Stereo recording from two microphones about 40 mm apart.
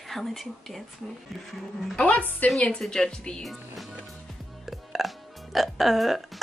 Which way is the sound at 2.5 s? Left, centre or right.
Centre.